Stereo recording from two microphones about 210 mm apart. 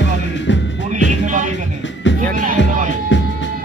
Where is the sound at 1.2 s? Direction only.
35° right (ahead or behind).